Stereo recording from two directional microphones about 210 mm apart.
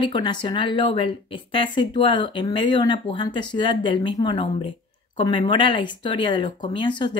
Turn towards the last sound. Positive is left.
turn(degrees=20)  # may be behind; listen again after turning